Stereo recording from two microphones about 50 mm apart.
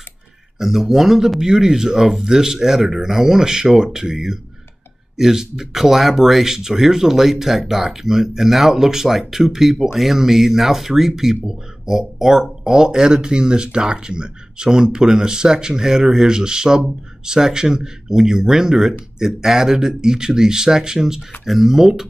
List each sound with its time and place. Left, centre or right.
0.6 s speech: centre